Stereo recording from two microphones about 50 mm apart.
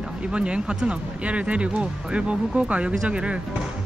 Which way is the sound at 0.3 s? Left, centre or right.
Right.